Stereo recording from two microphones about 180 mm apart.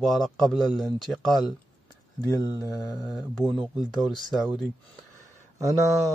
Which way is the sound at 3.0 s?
Centre (ahead or behind).